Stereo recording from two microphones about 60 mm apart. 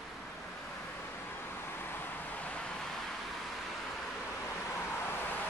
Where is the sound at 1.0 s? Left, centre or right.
Left; by 3.5 s centre.